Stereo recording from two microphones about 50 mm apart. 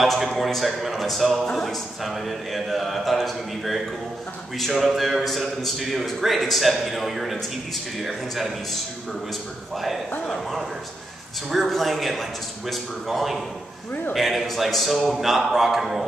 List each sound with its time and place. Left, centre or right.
0.0 s a man's voice: centre
2.0 s a man's voice: centre
10.2 s a man's voice: centre
11.6 s a man's voice: centre